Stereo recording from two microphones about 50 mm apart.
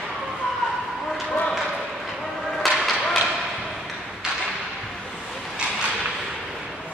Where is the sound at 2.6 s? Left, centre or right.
Centre.